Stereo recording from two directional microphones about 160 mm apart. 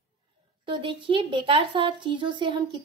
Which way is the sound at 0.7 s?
30° right (ahead or behind).